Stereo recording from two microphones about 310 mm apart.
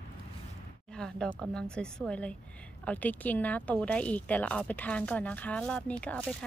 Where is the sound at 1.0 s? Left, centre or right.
Centre.